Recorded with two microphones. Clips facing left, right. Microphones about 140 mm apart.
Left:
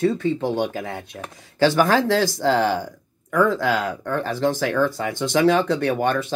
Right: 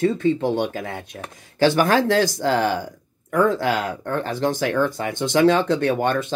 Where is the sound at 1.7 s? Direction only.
50° right (ahead or behind).